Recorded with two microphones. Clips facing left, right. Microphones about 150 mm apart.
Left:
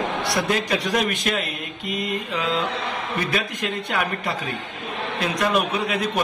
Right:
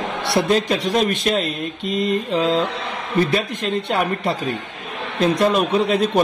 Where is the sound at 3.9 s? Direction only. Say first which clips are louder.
Right 5 dB; 30° right (ahead or behind).